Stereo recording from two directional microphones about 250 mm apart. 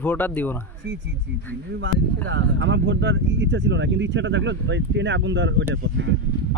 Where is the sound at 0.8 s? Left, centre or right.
Right.